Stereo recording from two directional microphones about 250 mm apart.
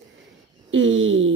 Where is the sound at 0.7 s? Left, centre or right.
Right.